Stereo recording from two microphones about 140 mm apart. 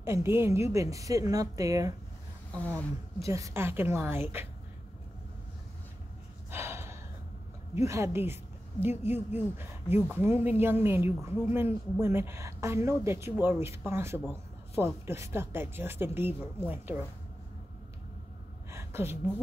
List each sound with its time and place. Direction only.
0.0 s a woman's voice: 20° right (ahead or behind)
6.5 s gasp: 15° right (ahead or behind)
7.7 s a woman's voice: 20° right (ahead or behind)
18.7 s a sound: 20° right (ahead or behind)